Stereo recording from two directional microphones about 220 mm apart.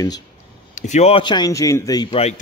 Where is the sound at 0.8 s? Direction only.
30° left (ahead or behind).